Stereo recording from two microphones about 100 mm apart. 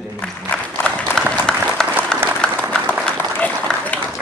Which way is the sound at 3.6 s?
15° left (ahead or behind).